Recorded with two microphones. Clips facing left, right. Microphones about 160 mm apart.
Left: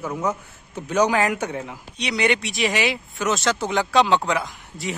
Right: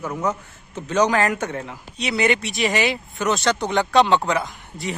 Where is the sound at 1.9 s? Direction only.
Centre (ahead or behind).